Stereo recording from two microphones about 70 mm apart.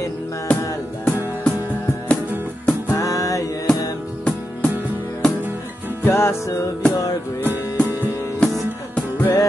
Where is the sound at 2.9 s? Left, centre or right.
Left.